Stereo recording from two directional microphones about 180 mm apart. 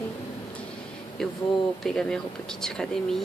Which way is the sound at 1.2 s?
5° left (ahead or behind).